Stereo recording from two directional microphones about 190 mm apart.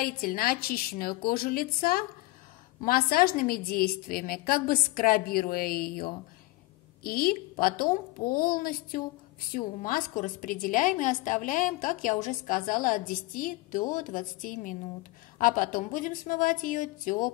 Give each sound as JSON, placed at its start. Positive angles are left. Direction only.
{"t": 0.0, "sound": "a woman's voice", "side_deg": 50}